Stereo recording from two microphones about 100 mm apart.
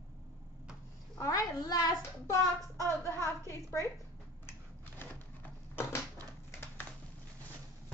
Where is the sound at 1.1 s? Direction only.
35° left (ahead or behind).